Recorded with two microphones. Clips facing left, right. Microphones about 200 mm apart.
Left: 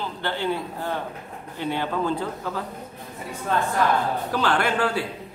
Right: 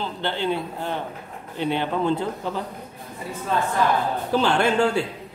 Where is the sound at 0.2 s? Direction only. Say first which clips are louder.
Right 1 dB; 20° right (ahead or behind).